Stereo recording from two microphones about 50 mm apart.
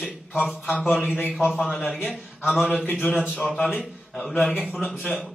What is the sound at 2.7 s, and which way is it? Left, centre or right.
Speech, left.